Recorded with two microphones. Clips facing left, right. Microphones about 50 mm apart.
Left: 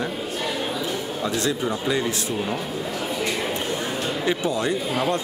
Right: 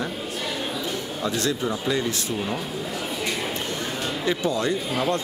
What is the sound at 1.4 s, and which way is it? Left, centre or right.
Speech, centre.